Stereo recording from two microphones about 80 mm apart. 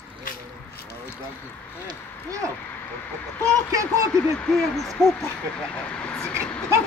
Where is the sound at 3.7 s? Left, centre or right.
Right.